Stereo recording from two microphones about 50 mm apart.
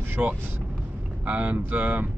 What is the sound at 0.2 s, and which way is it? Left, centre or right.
Speech, right.